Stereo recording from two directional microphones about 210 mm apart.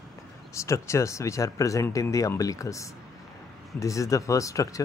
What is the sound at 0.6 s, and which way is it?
Speech, 15° left (ahead or behind).